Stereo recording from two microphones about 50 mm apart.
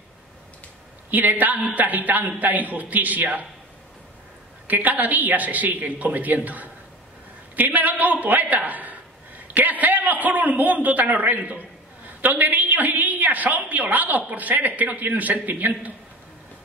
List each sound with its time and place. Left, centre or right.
1.1 s a man's voice: right
4.6 s a man's voice: right